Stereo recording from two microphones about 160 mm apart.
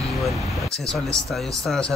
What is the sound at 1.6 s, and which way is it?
Speech, 5° left (ahead or behind).